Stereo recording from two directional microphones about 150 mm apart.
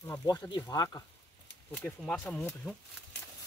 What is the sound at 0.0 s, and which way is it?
Speech, 25° left (ahead or behind).